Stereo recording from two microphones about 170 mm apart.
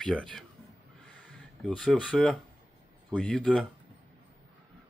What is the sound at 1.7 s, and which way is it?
Speech, centre (ahead or behind).